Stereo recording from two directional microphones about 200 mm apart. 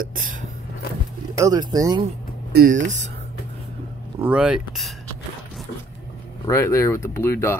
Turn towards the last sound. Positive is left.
turn(degrees=10)  # may be behind; listen again after turning